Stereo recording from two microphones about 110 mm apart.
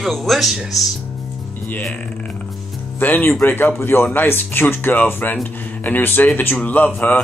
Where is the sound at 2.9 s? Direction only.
15° left (ahead or behind).